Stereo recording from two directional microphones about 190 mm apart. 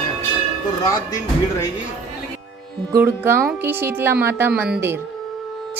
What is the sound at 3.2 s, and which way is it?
A woman's voice, 10° right (ahead or behind).